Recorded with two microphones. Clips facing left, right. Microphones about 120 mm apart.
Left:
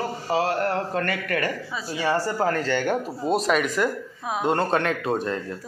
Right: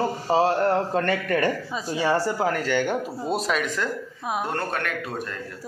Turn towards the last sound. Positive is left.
turn(degrees=30)  # may be behind; listen again after turning